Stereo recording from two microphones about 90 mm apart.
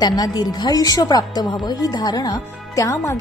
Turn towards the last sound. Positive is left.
turn(degrees=35)  # may be behind; listen again after turning